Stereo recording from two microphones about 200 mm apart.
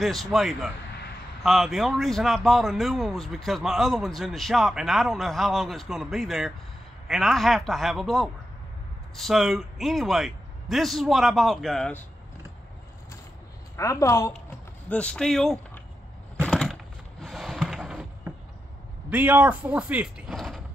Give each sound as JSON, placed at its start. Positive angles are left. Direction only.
{"t": 0.0, "sound": "a man's voice", "side_deg": 0}
{"t": 13.7, "sound": "a woman's voice", "side_deg": 15}
{"t": 14.9, "sound": "a man's voice", "side_deg": 5}
{"t": 16.4, "sound": "a sound", "side_deg": 5}
{"t": 19.0, "sound": "speech", "side_deg": -10}